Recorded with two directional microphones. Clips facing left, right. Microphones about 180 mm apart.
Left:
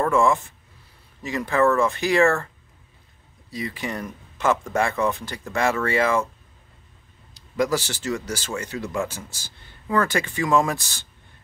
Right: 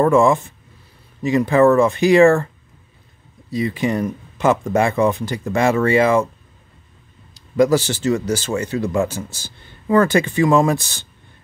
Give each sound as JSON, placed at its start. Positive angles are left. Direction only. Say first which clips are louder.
{"t": 0.0, "sound": "speech", "louder": "right 6 dB", "side_deg": -20}
{"t": 3.5, "sound": "speech", "louder": "right 10 dB", "side_deg": -20}
{"t": 7.3, "sound": "speech", "louder": "right 8 dB", "side_deg": -25}